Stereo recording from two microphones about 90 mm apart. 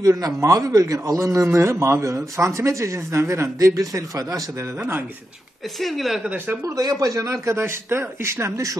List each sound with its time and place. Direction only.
0.0 s a man's voice: 35° right (ahead or behind)
5.8 s speech: centre (ahead or behind)
6.3 s speech: 20° right (ahead or behind)
6.6 s a man's voice: 45° right (ahead or behind)